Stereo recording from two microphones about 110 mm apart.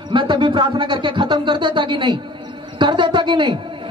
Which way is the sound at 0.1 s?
50° right (ahead or behind).